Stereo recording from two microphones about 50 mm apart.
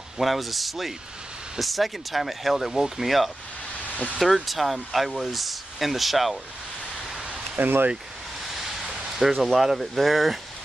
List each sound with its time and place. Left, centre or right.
0.2 s speech: centre
7.5 s speech: right
8.5 s a sound: centre
9.3 s speech: centre